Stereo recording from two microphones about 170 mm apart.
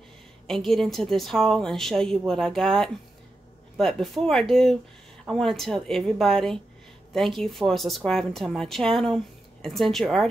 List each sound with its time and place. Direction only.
0.7 s a woman's voice: centre (ahead or behind)